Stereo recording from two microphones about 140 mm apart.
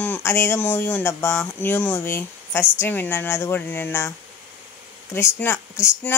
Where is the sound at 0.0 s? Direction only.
15° left (ahead or behind).